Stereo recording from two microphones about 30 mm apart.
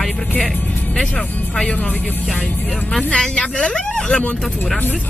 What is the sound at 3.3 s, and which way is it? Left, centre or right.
Speech, left.